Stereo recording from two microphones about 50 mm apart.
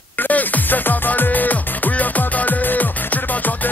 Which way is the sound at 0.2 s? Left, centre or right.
Left.